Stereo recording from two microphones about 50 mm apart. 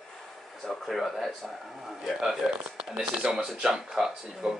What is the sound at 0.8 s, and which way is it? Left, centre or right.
Speech, centre.